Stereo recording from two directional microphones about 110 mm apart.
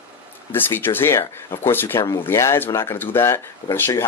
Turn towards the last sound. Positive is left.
turn(degrees=20)  # may be behind; listen again after turning